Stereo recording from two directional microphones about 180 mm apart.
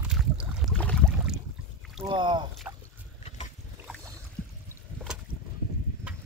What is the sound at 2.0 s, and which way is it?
Rowboat, 25° right (ahead or behind).